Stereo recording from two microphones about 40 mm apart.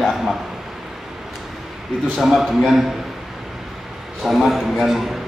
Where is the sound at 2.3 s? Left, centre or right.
Centre.